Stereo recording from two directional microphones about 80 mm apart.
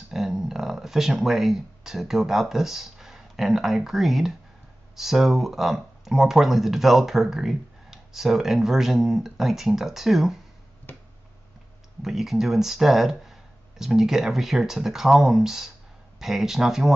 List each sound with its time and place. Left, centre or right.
0.1 s speech: centre
10.9 s a sound: left
12.0 s speech: centre